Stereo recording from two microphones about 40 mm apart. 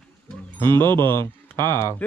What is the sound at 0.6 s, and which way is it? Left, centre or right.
Speech, left.